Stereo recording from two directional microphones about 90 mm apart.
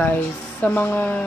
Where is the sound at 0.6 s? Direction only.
20° left (ahead or behind).